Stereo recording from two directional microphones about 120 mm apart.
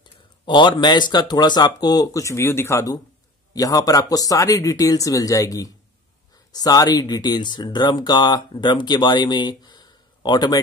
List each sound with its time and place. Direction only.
0.5 s speech: 40° left (ahead or behind)